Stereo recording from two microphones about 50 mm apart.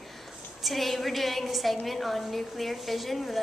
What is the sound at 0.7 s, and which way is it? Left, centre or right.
A woman's voice, centre.